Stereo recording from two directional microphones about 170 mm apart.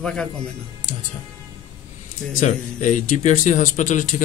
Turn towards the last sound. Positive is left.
turn(degrees=50)  # may be behind; listen again after turning